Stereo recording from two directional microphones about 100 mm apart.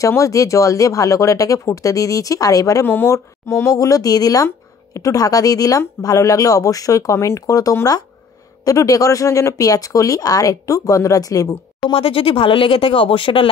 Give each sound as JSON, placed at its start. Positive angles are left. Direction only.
{"t": 0.0, "sound": "speech", "side_deg": 35}
{"t": 11.9, "sound": "speech", "side_deg": 65}